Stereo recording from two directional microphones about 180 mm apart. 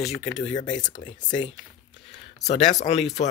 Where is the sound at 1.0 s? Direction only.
45° left (ahead or behind).